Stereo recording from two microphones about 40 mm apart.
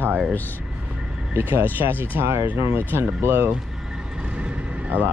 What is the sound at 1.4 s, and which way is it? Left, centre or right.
Speech, right.